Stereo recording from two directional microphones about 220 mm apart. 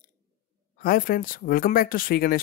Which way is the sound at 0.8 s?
40° left (ahead or behind).